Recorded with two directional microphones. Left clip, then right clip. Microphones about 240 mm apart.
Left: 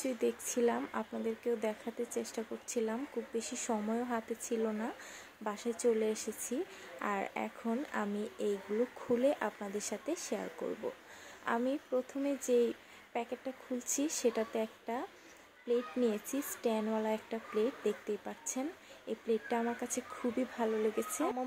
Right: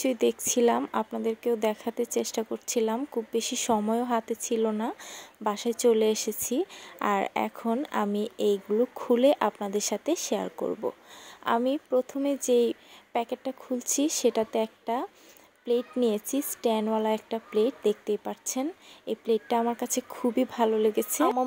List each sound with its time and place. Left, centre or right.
0.0 s speech: right